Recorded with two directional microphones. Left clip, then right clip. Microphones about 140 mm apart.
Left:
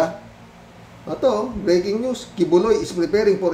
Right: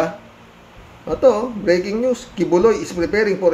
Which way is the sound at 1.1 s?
15° right (ahead or behind).